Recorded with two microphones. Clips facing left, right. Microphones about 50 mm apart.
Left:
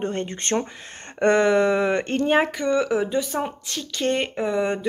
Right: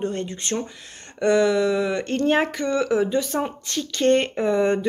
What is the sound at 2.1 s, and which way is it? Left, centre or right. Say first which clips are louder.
Speech: right 2 dB; centre.